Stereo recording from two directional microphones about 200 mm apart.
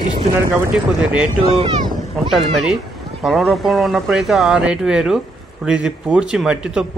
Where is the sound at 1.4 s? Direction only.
25° right (ahead or behind).